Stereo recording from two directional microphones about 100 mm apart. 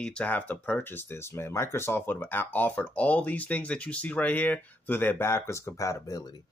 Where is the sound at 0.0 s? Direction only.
10° left (ahead or behind).